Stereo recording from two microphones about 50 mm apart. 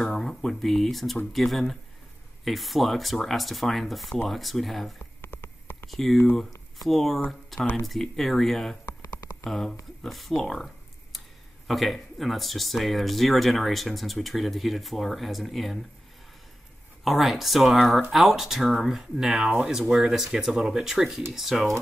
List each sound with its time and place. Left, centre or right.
0.0 s speech: centre
5.2 s a sound: left
5.9 s speech: centre
17.0 s speech: centre